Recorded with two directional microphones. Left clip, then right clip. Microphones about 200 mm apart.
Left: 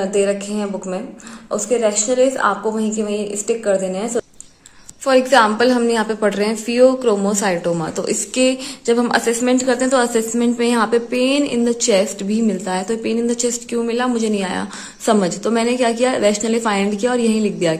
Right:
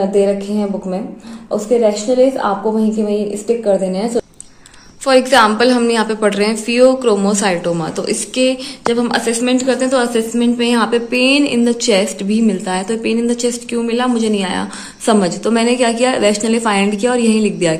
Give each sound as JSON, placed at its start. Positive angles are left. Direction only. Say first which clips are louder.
{"t": 0.0, "sound": "a woman's voice", "louder": "right 4 dB", "side_deg": 0}
{"t": 5.0, "sound": "a woman's voice", "louder": "right 3 dB", "side_deg": 20}